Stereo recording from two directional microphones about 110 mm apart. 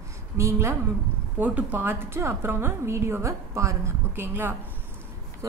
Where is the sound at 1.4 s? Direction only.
15° right (ahead or behind).